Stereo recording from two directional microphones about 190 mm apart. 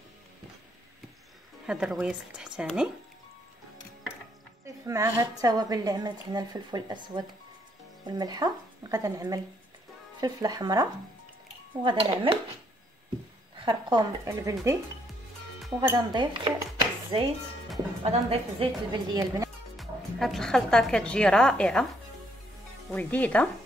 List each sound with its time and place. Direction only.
1.7 s speech: 5° right (ahead or behind)
4.8 s a woman's voice: 15° right (ahead or behind)
13.6 s speech: 25° right (ahead or behind)
15.8 s a woman's voice: 20° right (ahead or behind)
19.8 s a woman's voice: centre (ahead or behind)
22.9 s speech: 10° left (ahead or behind)